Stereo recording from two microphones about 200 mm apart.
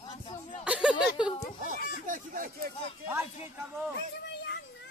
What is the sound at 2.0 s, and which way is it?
Speech, 40° right (ahead or behind).